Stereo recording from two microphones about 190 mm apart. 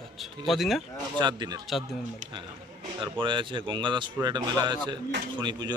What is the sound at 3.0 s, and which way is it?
Speech, 25° right (ahead or behind).